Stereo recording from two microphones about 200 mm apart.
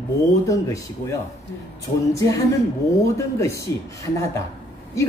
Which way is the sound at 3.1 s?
15° left (ahead or behind).